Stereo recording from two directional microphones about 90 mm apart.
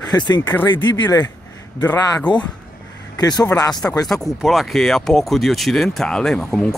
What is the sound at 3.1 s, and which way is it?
Speech, 45° left (ahead or behind).